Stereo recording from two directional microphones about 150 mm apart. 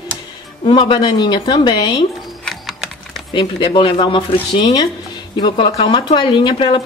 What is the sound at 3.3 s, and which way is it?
Speech, 35° left (ahead or behind).